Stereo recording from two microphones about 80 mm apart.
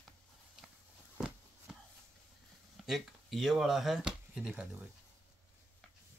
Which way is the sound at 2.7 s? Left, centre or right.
Centre.